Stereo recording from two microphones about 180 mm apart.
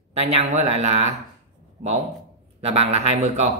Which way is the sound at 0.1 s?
35° right (ahead or behind).